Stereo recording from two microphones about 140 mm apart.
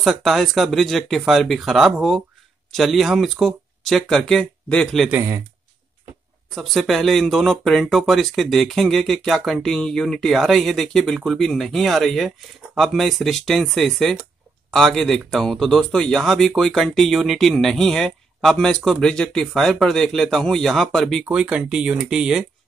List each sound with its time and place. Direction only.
0.0 s speech: centre (ahead or behind)
5.1 s speech: 20° right (ahead or behind)
6.5 s speech: centre (ahead or behind)